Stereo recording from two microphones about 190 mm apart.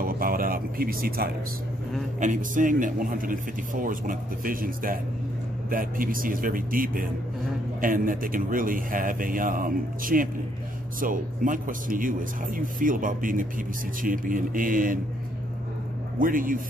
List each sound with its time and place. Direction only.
0.0 s music: 50° right (ahead or behind)
2.1 s speech: 40° right (ahead or behind)
16.2 s speech: 45° right (ahead or behind)